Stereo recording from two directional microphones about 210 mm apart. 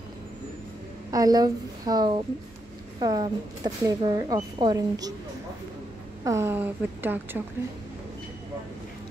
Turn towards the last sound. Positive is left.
turn(degrees=-10)  # may be behind; listen again after turning